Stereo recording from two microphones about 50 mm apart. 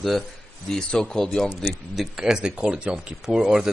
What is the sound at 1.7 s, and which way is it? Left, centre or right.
Speech, centre.